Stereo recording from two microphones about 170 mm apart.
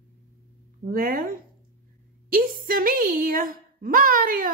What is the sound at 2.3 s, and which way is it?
A woman's voice, 55° right (ahead or behind).